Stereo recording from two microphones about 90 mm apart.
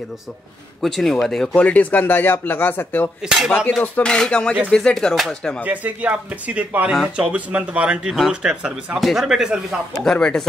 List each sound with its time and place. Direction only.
0.8 s speech: 5° left (ahead or behind)
1.5 s speech: 15° left (ahead or behind)
3.3 s speech: centre (ahead or behind)
3.8 s speech: 15° left (ahead or behind)
5.7 s speech: 15° right (ahead or behind)
9.9 s speech: 10° left (ahead or behind)